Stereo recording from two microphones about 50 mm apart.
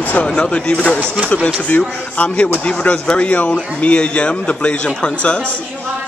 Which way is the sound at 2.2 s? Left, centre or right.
Left.